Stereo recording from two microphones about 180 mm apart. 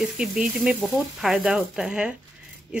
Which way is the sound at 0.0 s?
5° right (ahead or behind).